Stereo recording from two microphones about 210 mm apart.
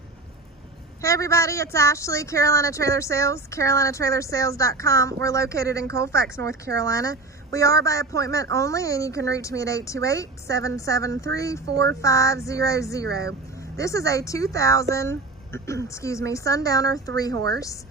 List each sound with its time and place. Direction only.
1.0 s speech: 15° left (ahead or behind)
13.0 s speech: 50° right (ahead or behind)
13.3 s speech: 15° left (ahead or behind)